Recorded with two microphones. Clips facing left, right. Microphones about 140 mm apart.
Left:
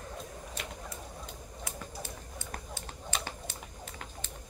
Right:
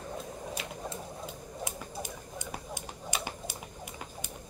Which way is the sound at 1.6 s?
15° right (ahead or behind).